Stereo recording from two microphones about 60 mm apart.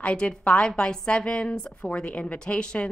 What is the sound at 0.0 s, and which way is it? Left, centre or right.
A woman's voice, centre.